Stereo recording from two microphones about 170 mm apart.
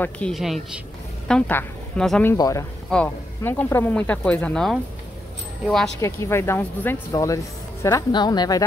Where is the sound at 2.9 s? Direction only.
10° left (ahead or behind).